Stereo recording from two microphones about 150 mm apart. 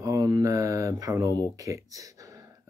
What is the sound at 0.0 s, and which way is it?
Mantra, 20° right (ahead or behind).